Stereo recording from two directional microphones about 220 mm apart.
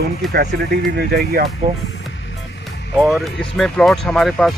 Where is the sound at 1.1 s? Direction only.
45° right (ahead or behind).